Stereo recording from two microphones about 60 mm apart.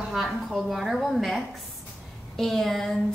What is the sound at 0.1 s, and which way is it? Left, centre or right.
A woman's voice, centre.